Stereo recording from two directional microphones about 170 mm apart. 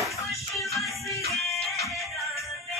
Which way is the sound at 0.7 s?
20° left (ahead or behind).